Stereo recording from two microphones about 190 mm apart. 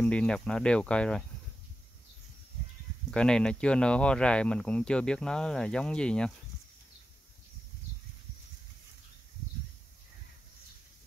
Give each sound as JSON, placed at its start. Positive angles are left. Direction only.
{"t": 0.0, "sound": "speech", "side_deg": 5}
{"t": 3.1, "sound": "speech", "side_deg": 5}